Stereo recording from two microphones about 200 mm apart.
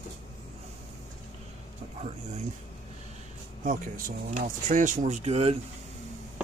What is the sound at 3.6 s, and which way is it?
Speech, 40° right (ahead or behind).